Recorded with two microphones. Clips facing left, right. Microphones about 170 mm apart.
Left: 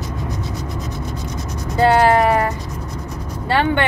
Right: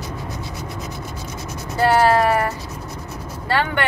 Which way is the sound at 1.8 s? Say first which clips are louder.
Left 2 dB; 20° left (ahead or behind).